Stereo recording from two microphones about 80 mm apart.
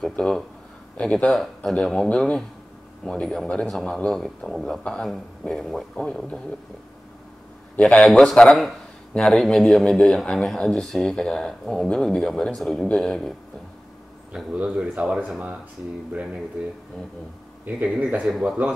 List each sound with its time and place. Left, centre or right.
0.2 s a man's voice: centre
7.9 s a man's voice: centre
14.3 s speech: centre
17.8 s speech: centre